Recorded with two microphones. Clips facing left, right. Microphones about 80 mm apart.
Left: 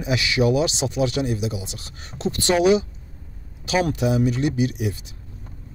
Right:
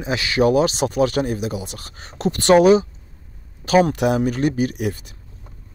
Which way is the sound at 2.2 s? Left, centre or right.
Right.